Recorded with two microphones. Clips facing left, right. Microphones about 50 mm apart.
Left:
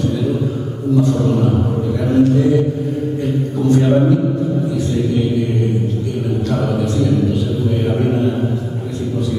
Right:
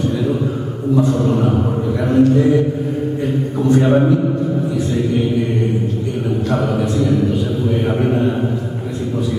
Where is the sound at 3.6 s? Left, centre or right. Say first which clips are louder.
Even; centre.